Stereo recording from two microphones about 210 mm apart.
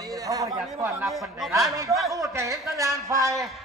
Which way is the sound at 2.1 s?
15° right (ahead or behind).